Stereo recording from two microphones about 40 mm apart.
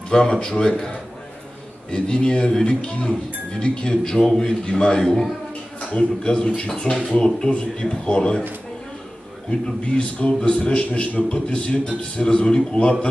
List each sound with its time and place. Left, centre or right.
0.4 s speech: centre
9.5 s speech: left